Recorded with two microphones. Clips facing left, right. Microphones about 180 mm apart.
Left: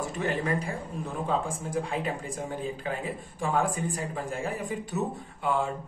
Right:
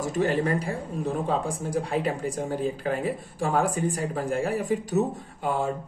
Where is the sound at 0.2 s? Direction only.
40° right (ahead or behind).